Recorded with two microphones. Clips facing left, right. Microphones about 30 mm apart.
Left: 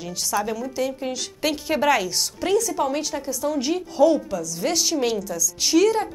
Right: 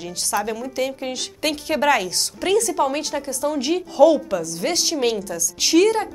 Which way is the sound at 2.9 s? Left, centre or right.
Right.